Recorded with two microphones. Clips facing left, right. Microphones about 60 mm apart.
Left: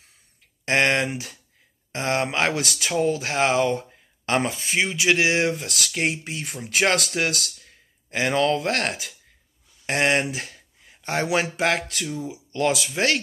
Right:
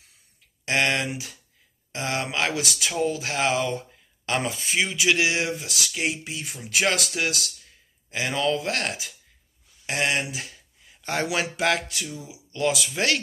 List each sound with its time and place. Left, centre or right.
0.7 s speech: left
11.9 s speech: left